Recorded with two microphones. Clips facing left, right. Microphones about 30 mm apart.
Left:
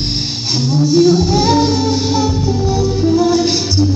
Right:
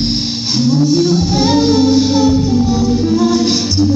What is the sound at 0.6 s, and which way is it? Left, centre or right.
Music, right.